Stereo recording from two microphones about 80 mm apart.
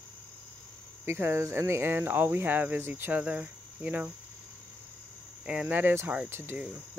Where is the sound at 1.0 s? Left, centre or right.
Right.